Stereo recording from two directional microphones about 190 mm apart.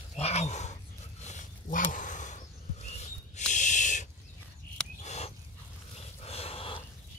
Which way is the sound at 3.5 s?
40° left (ahead or behind).